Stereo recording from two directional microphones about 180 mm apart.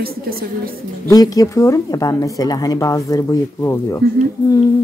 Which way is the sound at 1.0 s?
20° left (ahead or behind).